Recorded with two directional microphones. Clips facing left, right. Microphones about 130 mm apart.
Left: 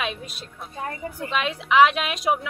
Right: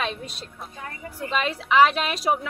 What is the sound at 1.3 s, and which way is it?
A woman's voice, centre (ahead or behind).